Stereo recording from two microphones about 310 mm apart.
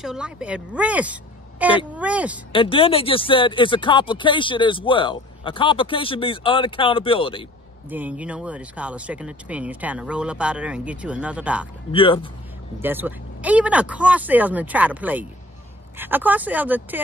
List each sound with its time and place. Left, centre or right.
0.0 s speech: centre
2.5 s speech: centre
7.9 s speech: centre
11.9 s speech: centre
12.8 s speech: centre